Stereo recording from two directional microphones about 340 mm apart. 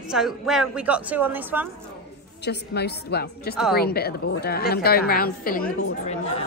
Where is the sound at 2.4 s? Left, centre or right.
Left.